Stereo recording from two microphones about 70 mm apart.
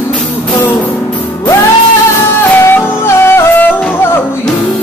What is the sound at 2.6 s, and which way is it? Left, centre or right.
Music, left.